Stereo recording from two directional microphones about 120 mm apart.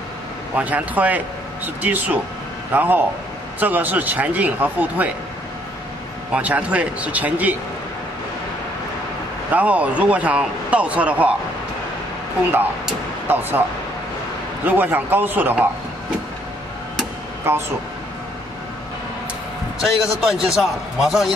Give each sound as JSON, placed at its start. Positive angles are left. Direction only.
{"t": 0.6, "sound": "speech", "side_deg": -15}
{"t": 6.3, "sound": "speech", "side_deg": -10}
{"t": 9.5, "sound": "speech", "side_deg": -10}
{"t": 13.3, "sound": "speech", "side_deg": -15}
{"t": 14.6, "sound": "speech", "side_deg": -15}
{"t": 19.8, "sound": "a man's voice", "side_deg": -5}